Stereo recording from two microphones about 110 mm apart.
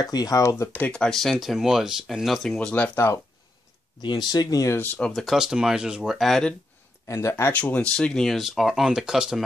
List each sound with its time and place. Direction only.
0.0 s speech: 35° left (ahead or behind)
0.8 s speech: 10° left (ahead or behind)
4.0 s speech: 45° left (ahead or behind)
4.7 s speech: 15° left (ahead or behind)
5.2 s speech: 5° right (ahead or behind)
7.1 s speech: 25° left (ahead or behind)
7.9 s speech: 5° left (ahead or behind)